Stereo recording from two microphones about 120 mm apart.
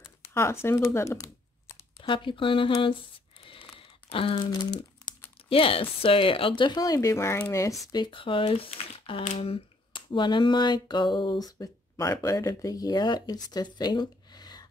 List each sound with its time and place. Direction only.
0.2 s tearing: 20° left (ahead or behind)
2.0 s speech: 45° left (ahead or behind)
4.1 s speech: 50° left (ahead or behind)
4.5 s speech: 35° left (ahead or behind)
5.5 s speech: 50° left (ahead or behind)
6.8 s speech: 30° left (ahead or behind)
7.8 s speech: 40° left (ahead or behind)
9.4 s a sound: 50° left (ahead or behind)